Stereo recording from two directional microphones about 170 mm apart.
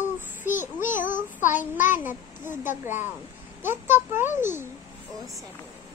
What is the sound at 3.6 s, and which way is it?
Speech, 15° right (ahead or behind).